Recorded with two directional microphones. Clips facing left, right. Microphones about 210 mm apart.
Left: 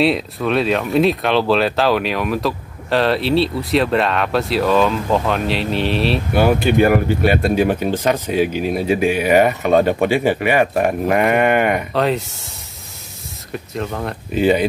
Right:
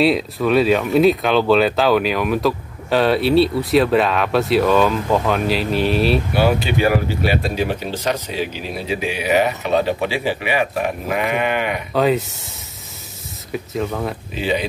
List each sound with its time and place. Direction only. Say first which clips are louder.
0.0 s speech: right 1 dB; centre (ahead or behind)
6.3 s speech: left 3 dB; 50° left (ahead or behind)
11.9 s speech: right 1 dB; centre (ahead or behind)
13.5 s speech: right 2 dB; 5° right (ahead or behind)
14.3 s speech: left 8 dB; 50° left (ahead or behind)